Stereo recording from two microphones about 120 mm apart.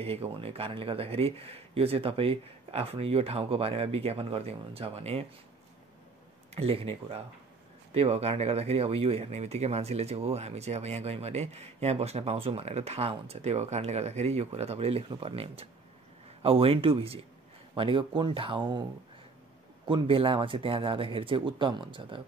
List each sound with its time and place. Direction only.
0.0 s speech: 55° right (ahead or behind)
6.5 s speech: 55° right (ahead or behind); by 18.9 s 40° right (ahead or behind)
19.9 s speech: 50° right (ahead or behind)